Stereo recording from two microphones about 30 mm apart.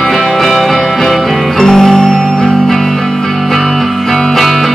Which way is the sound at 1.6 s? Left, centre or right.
Centre.